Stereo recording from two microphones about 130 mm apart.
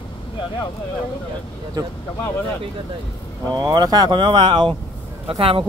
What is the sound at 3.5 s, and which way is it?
Speech, 30° right (ahead or behind).